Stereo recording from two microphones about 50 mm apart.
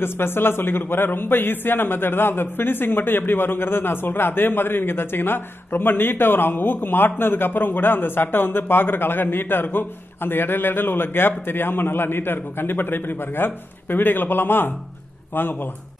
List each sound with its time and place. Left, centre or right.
0.0 s a man's voice: left